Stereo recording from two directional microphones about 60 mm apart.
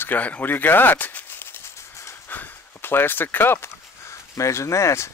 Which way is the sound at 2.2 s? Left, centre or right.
Left.